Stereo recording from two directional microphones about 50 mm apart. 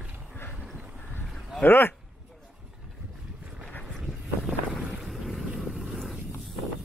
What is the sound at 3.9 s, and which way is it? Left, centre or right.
Vehicle, centre.